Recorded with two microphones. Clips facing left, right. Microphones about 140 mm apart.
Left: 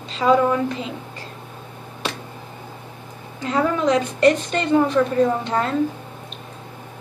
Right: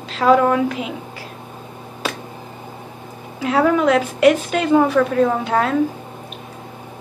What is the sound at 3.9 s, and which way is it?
A woman's voice, 5° right (ahead or behind).